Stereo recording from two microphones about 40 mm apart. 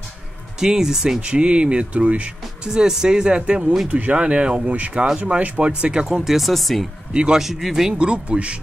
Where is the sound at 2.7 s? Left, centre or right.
Centre.